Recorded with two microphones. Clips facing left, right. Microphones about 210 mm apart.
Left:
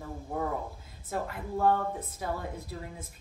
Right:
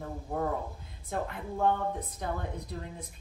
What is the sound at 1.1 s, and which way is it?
A woman's voice, 5° left (ahead or behind).